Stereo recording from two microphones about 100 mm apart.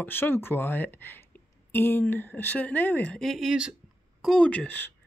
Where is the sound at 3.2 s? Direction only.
Centre (ahead or behind).